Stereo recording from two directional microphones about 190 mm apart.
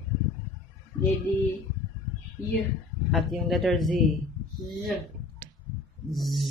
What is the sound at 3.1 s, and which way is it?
Speech, centre (ahead or behind).